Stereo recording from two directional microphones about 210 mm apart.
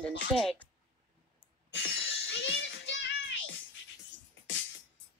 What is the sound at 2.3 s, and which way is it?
Music, 60° left (ahead or behind).